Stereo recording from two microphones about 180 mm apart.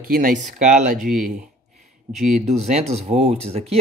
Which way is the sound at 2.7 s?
40° right (ahead or behind).